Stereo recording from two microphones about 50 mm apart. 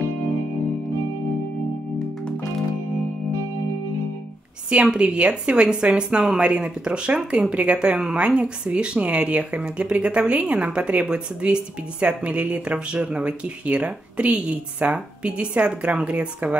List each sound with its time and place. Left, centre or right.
4.6 s speech: right